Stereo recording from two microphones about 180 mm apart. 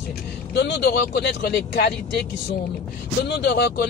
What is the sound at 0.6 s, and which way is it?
Speech, 70° left (ahead or behind).